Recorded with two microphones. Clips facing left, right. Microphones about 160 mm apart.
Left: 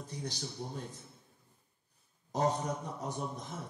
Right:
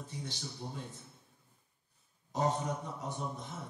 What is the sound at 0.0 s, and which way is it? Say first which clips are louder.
Speech: left 2 dB; 40° left (ahead or behind).